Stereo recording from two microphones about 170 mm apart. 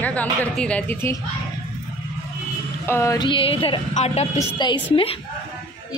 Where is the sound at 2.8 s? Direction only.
15° left (ahead or behind); by 4.5 s 40° left (ahead or behind).